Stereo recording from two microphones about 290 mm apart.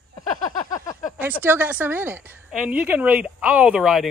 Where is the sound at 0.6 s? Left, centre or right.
Centre.